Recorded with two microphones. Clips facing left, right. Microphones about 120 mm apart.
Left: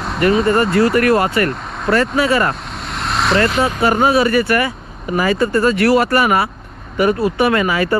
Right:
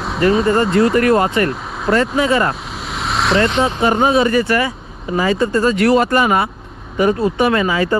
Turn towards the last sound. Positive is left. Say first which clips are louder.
# even
turn(degrees=-25)  # may be behind; listen again after turning